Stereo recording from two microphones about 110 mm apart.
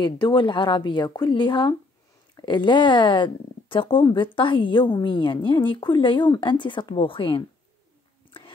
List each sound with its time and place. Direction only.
0.0 s speech: 45° left (ahead or behind)